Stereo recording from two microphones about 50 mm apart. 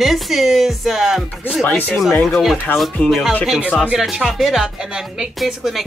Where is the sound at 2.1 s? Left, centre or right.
Left.